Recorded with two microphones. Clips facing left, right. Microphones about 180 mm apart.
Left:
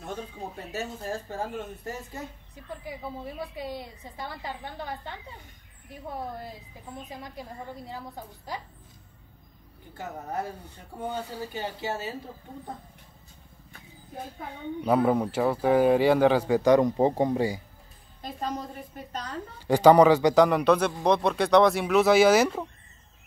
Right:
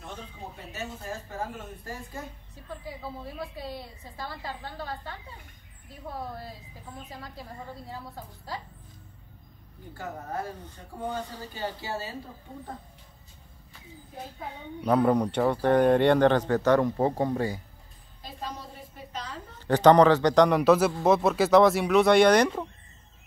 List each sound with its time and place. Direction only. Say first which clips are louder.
3.5 s speech: left 2 dB; 15° left (ahead or behind)
7.1 s speech: left 2 dB; 20° left (ahead or behind)
8.5 s speech: left 1 dB; 15° left (ahead or behind)
10.6 s speech: even; 5° left (ahead or behind)
11.5 s speech: even; 20° left (ahead or behind)
14.9 s speech: right 1 dB; 5° left (ahead or behind)
18.9 s a woman's voice: left 3 dB; 50° left (ahead or behind)
19.7 s speech: left 1 dB; 10° left (ahead or behind)